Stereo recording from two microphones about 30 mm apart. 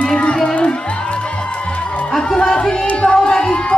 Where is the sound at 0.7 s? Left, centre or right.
Left.